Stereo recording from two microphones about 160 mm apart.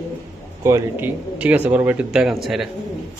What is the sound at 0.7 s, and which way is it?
Speech, 15° right (ahead or behind).